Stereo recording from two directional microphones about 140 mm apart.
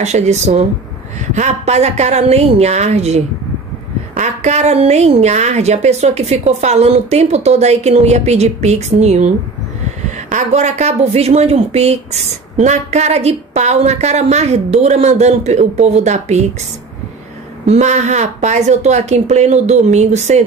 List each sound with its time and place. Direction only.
0.0 s a woman's voice: 55° right (ahead or behind)
17.6 s speech: 55° right (ahead or behind)